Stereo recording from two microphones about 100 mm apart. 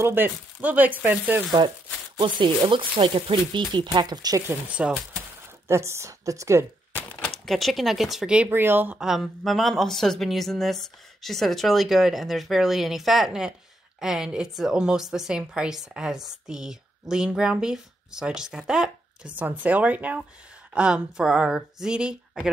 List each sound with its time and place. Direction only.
0.0 s speech: 20° right (ahead or behind)
2.1 s speech: 50° right (ahead or behind)
4.6 s speech: 10° right (ahead or behind)
5.7 s a woman's voice: 30° right (ahead or behind)
7.2 s speech: centre (ahead or behind)
8.5 s speech: 20° right (ahead or behind)
8.9 s speech: 5° right (ahead or behind)